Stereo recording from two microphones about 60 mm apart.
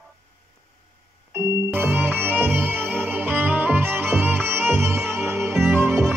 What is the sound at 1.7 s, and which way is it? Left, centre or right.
Music, right.